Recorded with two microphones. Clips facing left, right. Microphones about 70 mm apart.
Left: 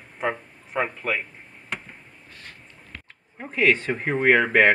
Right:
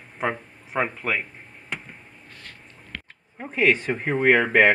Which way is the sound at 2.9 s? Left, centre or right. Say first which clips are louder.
Right 5 dB; right.